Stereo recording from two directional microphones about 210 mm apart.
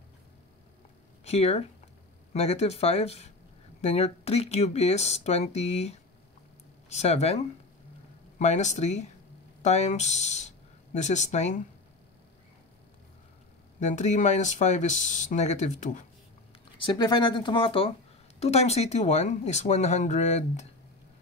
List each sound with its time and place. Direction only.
1.2 s speech: 30° left (ahead or behind)
13.7 s speech: 35° left (ahead or behind)
16.7 s speech: 20° left (ahead or behind)